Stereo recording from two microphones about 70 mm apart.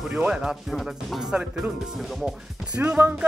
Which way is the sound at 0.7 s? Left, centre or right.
Centre.